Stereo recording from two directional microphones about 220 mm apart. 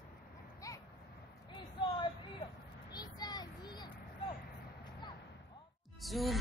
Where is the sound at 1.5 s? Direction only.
20° left (ahead or behind).